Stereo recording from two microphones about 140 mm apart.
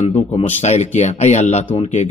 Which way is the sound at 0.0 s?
50° left (ahead or behind).